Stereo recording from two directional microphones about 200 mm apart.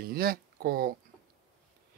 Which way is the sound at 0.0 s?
50° right (ahead or behind).